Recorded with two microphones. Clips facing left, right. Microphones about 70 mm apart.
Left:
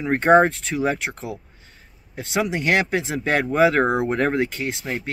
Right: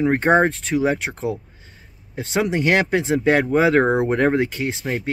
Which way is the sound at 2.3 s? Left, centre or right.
Right.